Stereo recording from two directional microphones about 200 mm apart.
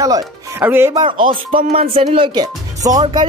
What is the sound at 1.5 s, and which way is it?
Speech, 30° right (ahead or behind).